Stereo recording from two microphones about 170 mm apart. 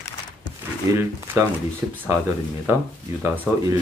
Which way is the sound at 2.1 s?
15° right (ahead or behind).